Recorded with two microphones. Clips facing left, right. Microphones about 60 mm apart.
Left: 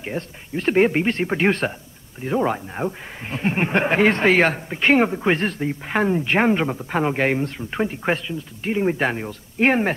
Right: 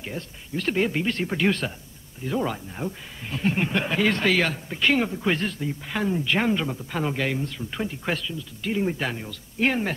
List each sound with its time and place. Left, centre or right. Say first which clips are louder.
0.0 s speech: left 6 dB; left